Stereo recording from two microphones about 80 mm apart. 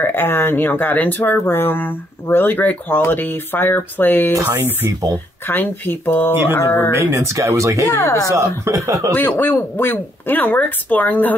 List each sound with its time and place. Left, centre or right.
0.0 s speech: left
5.5 s speech: left
6.9 s speech: right
7.9 s speech: left
8.3 s speech: right
9.4 s speech: left